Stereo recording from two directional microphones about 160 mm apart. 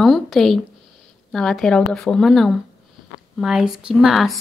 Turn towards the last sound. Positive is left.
turn(degrees=0)  # may be behind; listen again after turning